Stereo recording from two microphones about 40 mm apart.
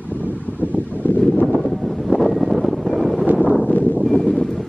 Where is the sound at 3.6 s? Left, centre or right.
Left.